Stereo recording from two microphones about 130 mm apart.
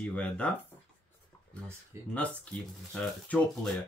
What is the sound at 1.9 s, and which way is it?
Speech, 20° right (ahead or behind).